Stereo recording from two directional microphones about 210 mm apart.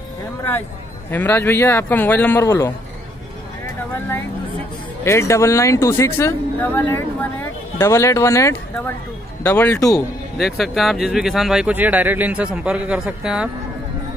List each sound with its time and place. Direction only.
1.1 s speech: 10° left (ahead or behind)
5.0 s speech: 15° left (ahead or behind)
10.3 s speech: centre (ahead or behind)